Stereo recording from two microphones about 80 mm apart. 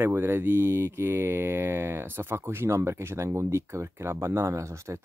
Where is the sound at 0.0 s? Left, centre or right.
Right.